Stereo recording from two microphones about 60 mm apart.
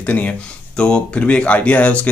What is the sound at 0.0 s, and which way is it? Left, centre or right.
Speech, left.